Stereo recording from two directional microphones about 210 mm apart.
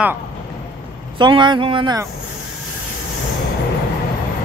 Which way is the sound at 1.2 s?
20° right (ahead or behind).